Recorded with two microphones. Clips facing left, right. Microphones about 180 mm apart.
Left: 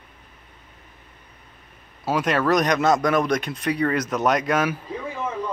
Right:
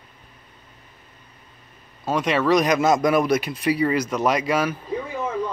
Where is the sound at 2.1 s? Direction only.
Centre (ahead or behind).